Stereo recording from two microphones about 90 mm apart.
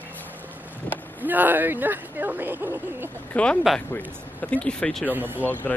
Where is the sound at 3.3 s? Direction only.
10° left (ahead or behind).